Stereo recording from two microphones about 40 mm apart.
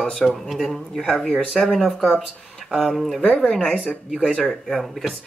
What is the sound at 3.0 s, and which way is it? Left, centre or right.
Speech, centre.